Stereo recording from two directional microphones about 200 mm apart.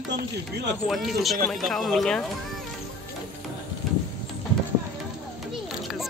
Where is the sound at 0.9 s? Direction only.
Centre (ahead or behind).